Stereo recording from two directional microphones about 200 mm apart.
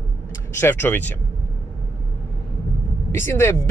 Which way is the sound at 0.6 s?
10° left (ahead or behind).